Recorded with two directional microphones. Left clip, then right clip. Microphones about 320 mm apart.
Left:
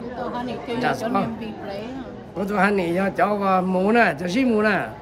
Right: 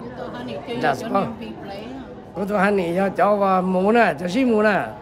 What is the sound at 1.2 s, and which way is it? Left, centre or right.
Speech, centre.